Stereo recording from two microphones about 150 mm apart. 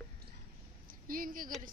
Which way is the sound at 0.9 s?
70° right (ahead or behind).